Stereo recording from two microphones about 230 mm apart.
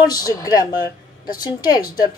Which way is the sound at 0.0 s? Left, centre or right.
Centre.